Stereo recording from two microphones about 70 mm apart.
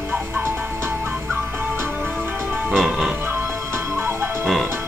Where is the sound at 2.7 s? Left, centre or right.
Centre.